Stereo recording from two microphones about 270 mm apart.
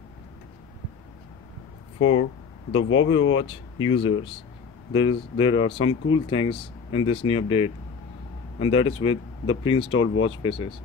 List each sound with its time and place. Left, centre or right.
2.0 s speech: left
3.4 s speech: centre
9.9 s speech: left
10.4 s speech: centre